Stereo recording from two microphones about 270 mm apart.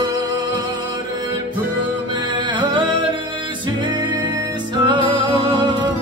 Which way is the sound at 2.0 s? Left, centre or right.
Centre.